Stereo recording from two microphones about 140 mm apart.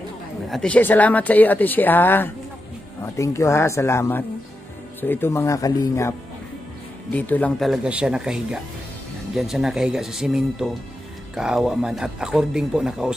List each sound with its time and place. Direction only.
0.5 s speech: 5° left (ahead or behind); by 6.1 s 20° left (ahead or behind)
7.1 s speech: 10° left (ahead or behind)
7.6 s speech: 5° right (ahead or behind)